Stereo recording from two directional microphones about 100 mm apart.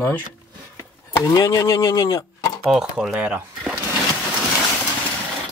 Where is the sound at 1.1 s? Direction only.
35° left (ahead or behind).